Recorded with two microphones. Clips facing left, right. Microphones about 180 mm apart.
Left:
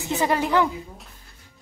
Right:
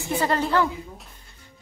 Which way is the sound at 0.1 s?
15° left (ahead or behind).